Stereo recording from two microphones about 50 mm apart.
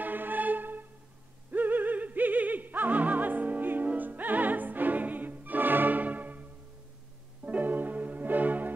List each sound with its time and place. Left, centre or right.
0.0 s music: right
7.4 s music: right